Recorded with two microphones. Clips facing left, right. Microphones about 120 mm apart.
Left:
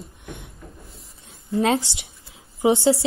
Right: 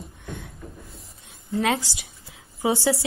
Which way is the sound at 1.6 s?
30° left (ahead or behind).